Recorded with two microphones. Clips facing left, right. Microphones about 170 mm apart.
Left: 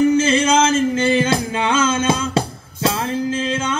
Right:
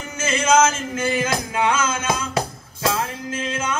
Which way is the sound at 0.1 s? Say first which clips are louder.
Left 4 dB; 30° left (ahead or behind).